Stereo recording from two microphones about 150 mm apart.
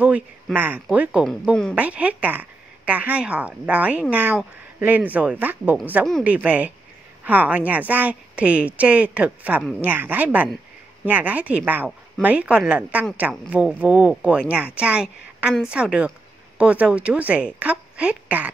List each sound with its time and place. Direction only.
0.0 s a woman's voice: 10° right (ahead or behind)